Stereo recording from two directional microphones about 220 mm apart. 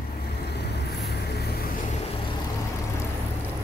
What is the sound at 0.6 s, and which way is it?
Vehicle, 50° left (ahead or behind).